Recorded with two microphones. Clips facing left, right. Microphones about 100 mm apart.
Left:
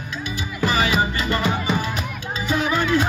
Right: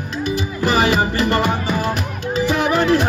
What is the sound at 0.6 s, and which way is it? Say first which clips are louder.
Music: right 3 dB; 75° right (ahead or behind).